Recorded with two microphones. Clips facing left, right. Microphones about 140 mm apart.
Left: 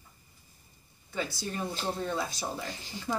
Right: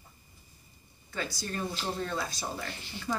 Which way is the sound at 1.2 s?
20° left (ahead or behind).